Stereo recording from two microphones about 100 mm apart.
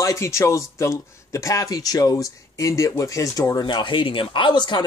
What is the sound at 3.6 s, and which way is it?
Speech, 50° left (ahead or behind).